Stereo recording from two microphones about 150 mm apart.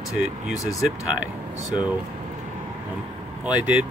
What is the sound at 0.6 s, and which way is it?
Speech, 20° left (ahead or behind).